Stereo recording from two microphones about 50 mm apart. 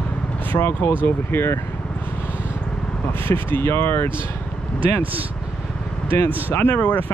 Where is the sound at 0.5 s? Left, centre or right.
Left.